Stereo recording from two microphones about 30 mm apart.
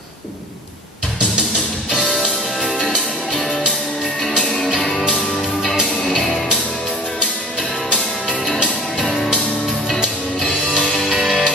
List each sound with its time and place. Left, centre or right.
2.6 s music: centre
6.0 s music: centre
8.9 s music: centre
10.4 s music: centre